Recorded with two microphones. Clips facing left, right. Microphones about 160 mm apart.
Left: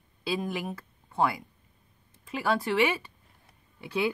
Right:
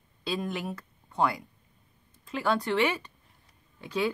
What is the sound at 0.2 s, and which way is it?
Speech, 5° left (ahead or behind).